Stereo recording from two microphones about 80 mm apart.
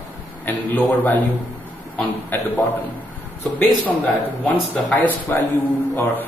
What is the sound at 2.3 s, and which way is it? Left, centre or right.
Speech, left.